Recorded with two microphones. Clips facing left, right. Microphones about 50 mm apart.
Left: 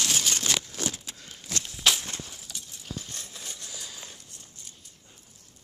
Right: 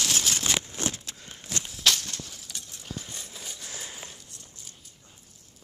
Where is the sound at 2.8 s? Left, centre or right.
Centre.